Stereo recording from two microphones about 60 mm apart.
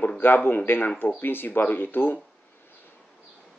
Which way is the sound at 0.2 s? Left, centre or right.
Left.